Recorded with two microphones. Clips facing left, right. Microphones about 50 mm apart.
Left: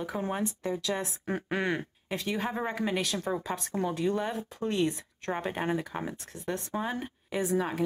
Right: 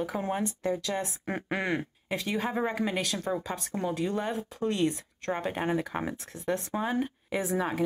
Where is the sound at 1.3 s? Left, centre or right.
Centre.